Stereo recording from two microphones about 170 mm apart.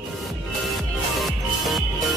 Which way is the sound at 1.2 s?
Centre (ahead or behind).